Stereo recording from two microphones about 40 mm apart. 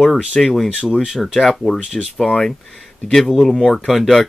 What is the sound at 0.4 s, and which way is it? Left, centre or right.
Speech, centre.